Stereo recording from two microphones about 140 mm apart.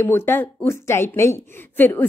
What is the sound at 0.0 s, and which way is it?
A woman's voice, 15° left (ahead or behind).